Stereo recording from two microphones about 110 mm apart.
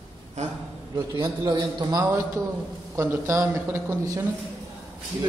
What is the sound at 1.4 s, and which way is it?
Speech, 40° right (ahead or behind).